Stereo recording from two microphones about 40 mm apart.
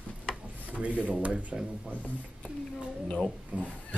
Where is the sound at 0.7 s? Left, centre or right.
Right.